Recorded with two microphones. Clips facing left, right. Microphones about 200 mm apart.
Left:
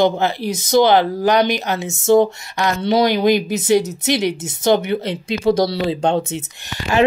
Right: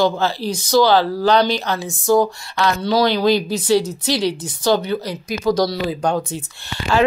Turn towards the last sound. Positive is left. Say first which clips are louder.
# left 1 dB
turn(degrees=20)  # may be behind; listen again after turning